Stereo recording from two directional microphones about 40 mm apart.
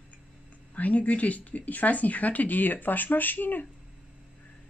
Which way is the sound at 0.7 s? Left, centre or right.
Left.